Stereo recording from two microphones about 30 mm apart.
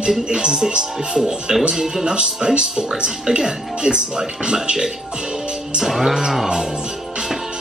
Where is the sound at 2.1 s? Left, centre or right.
Right.